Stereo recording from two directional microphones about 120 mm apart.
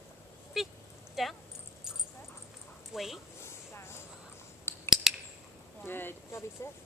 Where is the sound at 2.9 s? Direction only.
Centre (ahead or behind).